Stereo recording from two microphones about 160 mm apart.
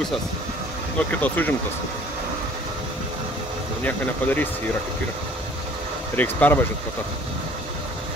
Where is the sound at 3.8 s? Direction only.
10° left (ahead or behind).